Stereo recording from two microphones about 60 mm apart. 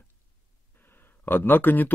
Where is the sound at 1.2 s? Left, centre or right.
Left.